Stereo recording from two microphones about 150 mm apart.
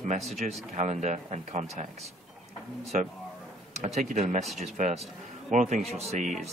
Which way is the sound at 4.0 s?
55° right (ahead or behind).